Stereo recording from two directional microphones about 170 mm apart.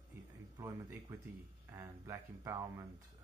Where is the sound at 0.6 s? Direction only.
15° right (ahead or behind).